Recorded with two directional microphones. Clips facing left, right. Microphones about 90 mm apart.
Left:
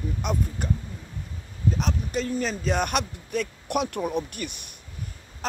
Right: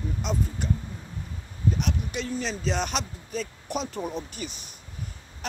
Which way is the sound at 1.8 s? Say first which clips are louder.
Left 3 dB; 40° left (ahead or behind).